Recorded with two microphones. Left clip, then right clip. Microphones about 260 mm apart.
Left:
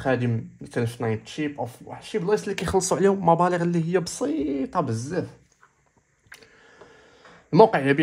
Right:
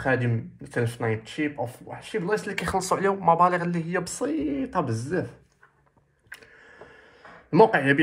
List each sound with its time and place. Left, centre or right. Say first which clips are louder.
0.0 s speech: even; left
7.5 s speech: left 1 dB; left